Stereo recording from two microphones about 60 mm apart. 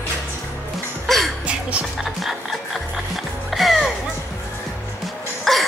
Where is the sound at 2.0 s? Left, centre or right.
Centre.